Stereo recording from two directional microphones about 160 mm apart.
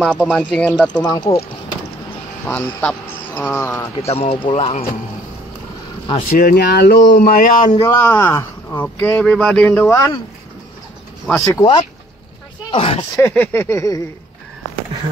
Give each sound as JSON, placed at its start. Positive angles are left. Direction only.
{"t": 0.2, "sound": "speech", "side_deg": -5}
{"t": 0.5, "sound": "speech", "side_deg": 5}
{"t": 1.0, "sound": "speech", "side_deg": 20}
{"t": 2.4, "sound": "speech", "side_deg": 10}
{"t": 4.0, "sound": "speech", "side_deg": 35}
{"t": 6.3, "sound": "speech", "side_deg": 70}
{"t": 7.7, "sound": "speech", "side_deg": 20}
{"t": 11.2, "sound": "speech", "side_deg": 20}
{"t": 12.7, "sound": "speech", "side_deg": 35}
{"t": 13.1, "sound": "speech", "side_deg": 15}